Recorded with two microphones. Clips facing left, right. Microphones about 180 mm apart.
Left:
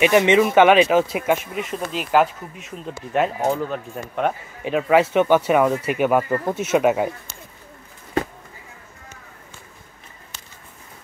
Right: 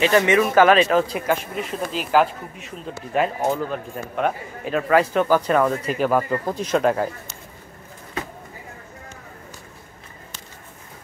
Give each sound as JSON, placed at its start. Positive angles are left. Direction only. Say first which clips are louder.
{"t": 0.0, "sound": "speech", "louder": "left 2 dB", "side_deg": 20}
{"t": 0.6, "sound": "speech", "louder": "even", "side_deg": 5}